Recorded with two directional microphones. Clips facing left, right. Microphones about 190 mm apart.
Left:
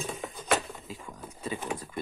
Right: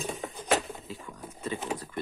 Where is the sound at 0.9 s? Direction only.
10° left (ahead or behind).